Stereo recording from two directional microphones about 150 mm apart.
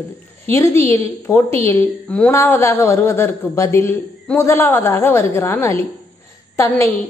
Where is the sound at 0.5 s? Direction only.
15° left (ahead or behind).